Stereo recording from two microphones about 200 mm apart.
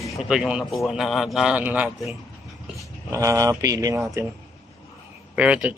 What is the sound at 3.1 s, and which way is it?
Speech, 15° right (ahead or behind).